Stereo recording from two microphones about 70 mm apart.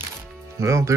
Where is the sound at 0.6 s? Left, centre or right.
Right.